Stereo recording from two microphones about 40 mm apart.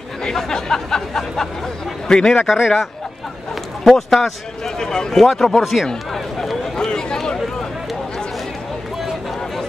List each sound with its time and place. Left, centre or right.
0.2 s a man's voice: centre
2.4 s speech: centre
3.8 s a man's voice: centre
5.2 s speech: centre
6.1 s run: centre
6.8 s a sound: centre